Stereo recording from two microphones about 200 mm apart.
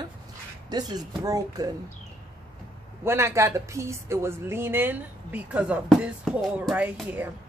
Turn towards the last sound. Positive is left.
turn(degrees=-5)  # may be behind; listen again after turning